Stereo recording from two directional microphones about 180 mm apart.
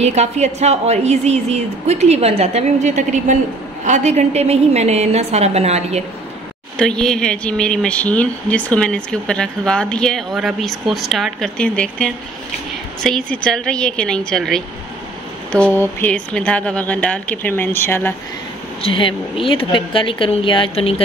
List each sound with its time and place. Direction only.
0.0 s a woman's voice: 40° right (ahead or behind)
6.8 s speech: 5° left (ahead or behind)
18.8 s speech: 30° left (ahead or behind)